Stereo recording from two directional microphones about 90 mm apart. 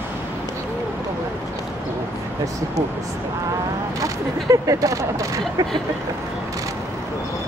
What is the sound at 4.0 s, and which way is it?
Speech, 40° right (ahead or behind).